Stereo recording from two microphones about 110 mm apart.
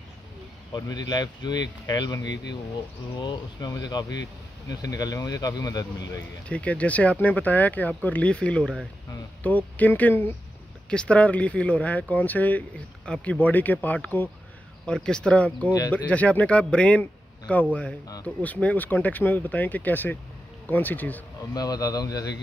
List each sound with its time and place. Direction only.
0.7 s speech: 35° left (ahead or behind)
6.5 s speech: 10° left (ahead or behind)
21.5 s speech: 35° left (ahead or behind)